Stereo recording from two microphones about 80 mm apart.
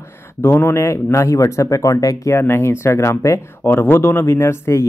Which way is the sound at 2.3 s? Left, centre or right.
Left.